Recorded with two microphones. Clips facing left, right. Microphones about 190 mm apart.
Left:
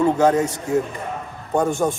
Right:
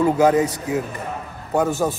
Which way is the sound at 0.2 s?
5° right (ahead or behind).